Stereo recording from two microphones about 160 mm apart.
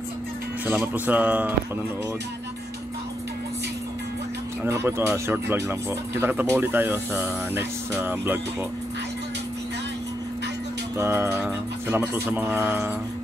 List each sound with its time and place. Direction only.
0.7 s speech: 10° right (ahead or behind)
4.6 s speech: 15° right (ahead or behind)
11.0 s speech: 15° right (ahead or behind)